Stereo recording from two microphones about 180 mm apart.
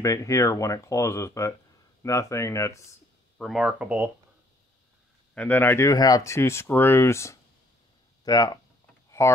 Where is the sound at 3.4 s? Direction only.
Centre (ahead or behind).